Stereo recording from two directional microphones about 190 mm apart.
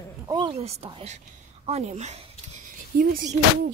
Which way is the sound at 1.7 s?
35° right (ahead or behind).